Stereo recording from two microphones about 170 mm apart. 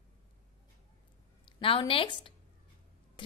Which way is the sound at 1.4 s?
30° left (ahead or behind).